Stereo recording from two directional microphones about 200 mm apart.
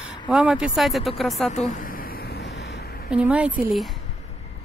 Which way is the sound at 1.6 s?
40° left (ahead or behind).